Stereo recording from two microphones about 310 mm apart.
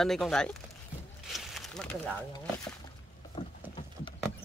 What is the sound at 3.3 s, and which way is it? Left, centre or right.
Clip-clop, centre.